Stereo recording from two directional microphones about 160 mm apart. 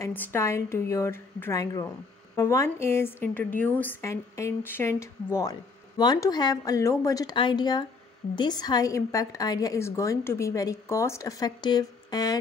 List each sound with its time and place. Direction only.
0.0 s a woman's voice: 15° left (ahead or behind)